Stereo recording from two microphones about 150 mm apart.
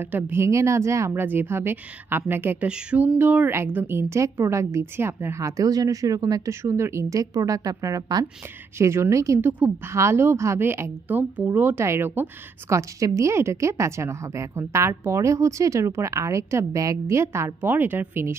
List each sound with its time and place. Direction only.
0.0 s a woman's voice: 15° right (ahead or behind)